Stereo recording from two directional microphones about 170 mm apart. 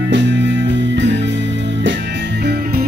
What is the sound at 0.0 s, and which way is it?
Music, 90° right.